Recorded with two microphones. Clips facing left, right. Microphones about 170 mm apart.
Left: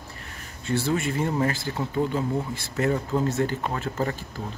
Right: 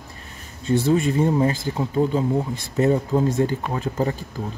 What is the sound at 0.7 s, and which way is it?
Speech, 15° right (ahead or behind).